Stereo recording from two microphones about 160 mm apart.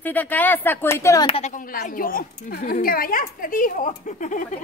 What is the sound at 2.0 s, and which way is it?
A woman's voice, 65° left (ahead or behind).